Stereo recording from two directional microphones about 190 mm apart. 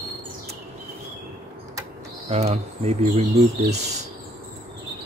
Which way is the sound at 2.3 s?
35° right (ahead or behind).